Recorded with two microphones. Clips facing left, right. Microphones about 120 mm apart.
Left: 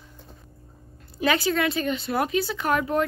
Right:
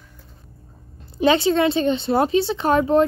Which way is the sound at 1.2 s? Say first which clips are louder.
Right 6 dB; 25° right (ahead or behind).